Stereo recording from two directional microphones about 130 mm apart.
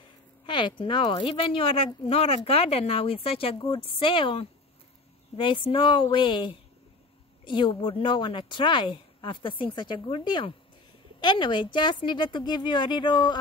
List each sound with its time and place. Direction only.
0.5 s a woman's voice: 35° left (ahead or behind)